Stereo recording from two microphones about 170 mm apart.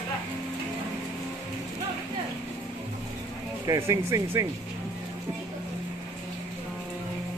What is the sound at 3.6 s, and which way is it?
Speech, 20° right (ahead or behind).